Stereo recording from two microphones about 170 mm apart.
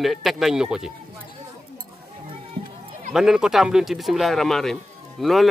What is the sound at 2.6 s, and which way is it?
Music, 30° right (ahead or behind).